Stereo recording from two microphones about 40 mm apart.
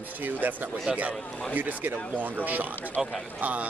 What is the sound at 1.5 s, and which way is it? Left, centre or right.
Speech, right.